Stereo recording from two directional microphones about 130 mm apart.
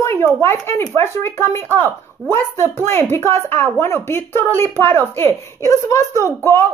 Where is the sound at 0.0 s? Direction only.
20° left (ahead or behind).